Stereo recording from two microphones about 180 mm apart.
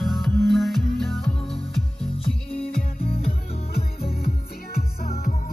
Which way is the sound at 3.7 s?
60° left (ahead or behind).